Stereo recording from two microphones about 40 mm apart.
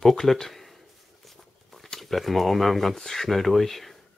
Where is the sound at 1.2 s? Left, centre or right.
Centre.